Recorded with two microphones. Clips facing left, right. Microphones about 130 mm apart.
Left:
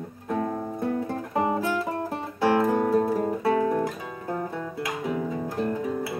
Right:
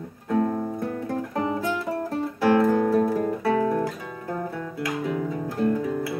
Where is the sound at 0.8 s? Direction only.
20° left (ahead or behind).